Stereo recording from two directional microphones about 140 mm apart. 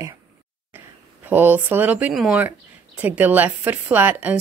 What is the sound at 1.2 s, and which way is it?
Speech, 15° right (ahead or behind).